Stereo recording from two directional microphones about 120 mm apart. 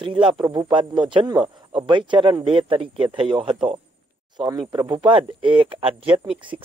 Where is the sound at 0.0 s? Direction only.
50° right (ahead or behind).